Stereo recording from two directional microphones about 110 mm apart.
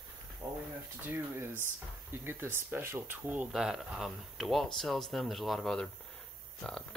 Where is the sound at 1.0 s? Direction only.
20° right (ahead or behind).